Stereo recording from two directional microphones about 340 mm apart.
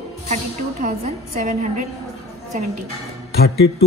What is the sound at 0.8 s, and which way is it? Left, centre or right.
Speech, right.